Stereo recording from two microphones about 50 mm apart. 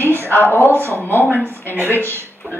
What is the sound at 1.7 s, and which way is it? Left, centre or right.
Speech, right.